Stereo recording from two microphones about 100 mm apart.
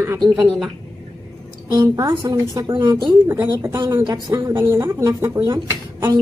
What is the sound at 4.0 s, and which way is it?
Speech, 40° right (ahead or behind).